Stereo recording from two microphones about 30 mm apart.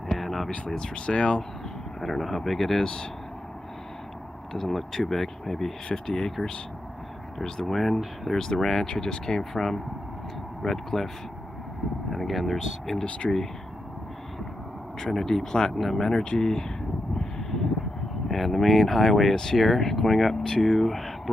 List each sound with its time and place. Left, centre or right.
0.1 s vehicle: centre
0.7 s speech: left
2.0 s speech: centre
4.5 s speech: centre
7.4 s speech: centre
7.7 s speech: centre
12.1 s speech: centre
15.0 s speech: centre
17.2 s a sound: centre
18.3 s speech: centre